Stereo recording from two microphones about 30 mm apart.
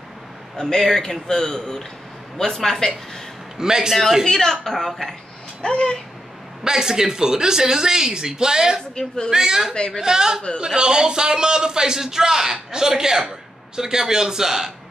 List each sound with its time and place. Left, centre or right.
0.6 s a man's voice: centre
3.5 s a man's voice: right
4.3 s speech: centre
4.7 s speech: centre
5.6 s speech: left
6.6 s a man's voice: right
8.9 s speech: left
9.3 s a man's voice: centre